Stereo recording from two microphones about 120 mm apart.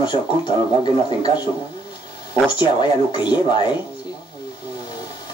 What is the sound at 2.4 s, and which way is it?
Speech, 40° left (ahead or behind).